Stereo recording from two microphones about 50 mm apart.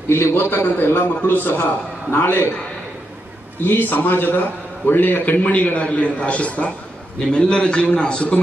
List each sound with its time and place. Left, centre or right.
0.1 s a man's voice: left
3.6 s a man's voice: left
5.4 s a man's voice: left